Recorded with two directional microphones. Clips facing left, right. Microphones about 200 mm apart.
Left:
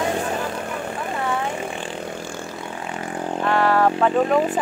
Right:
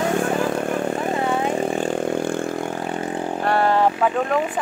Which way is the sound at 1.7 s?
45° right (ahead or behind).